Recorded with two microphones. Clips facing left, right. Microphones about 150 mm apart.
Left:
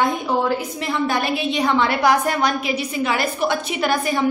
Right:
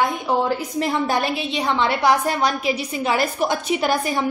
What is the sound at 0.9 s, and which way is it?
A woman's voice, 35° right (ahead or behind).